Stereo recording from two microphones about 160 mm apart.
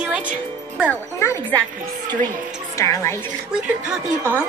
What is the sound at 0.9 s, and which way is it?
Speech, 15° left (ahead or behind).